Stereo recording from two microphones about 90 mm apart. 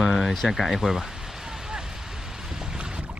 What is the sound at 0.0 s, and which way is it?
Speech, 5° right (ahead or behind).